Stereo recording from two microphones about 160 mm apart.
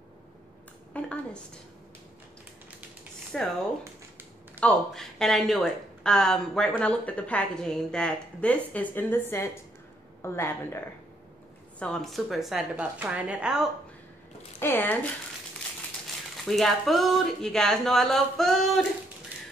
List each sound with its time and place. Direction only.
0.9 s a sound: 10° left (ahead or behind)
3.3 s speech: 5° left (ahead or behind)
4.6 s a woman's voice: 5° left (ahead or behind)
11.8 s speech: 5° left (ahead or behind)
14.6 s a woman's voice: 15° left (ahead or behind)
16.4 s speech: centre (ahead or behind)